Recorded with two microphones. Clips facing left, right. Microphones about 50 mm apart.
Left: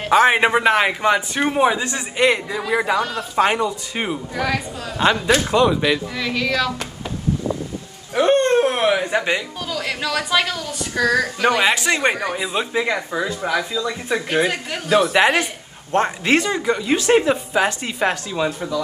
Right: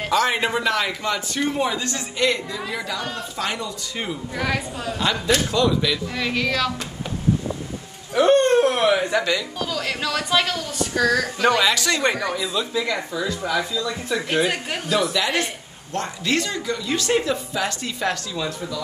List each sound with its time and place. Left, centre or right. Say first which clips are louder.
0.1 s a man's voice: left 7 dB; left
6.1 s music: left 2 dB; centre
8.1 s a man's voice: even; left
15.9 s a man's voice: left 7 dB; left